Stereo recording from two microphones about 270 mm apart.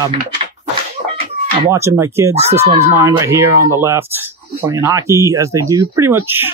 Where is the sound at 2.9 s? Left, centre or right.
Centre.